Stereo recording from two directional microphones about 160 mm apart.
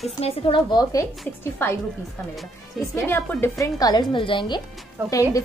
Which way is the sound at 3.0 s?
15° left (ahead or behind).